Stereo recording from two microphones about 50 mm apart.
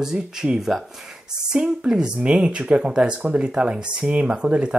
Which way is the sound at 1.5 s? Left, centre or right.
Centre.